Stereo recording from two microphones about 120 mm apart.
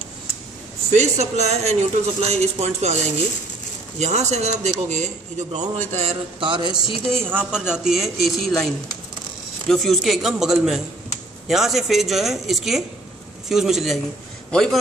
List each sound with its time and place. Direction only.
0.9 s speech: 65° right (ahead or behind)
6.4 s speech: 40° right (ahead or behind)
7.1 s a woman's voice: 20° right (ahead or behind); by 14.8 s 5° left (ahead or behind)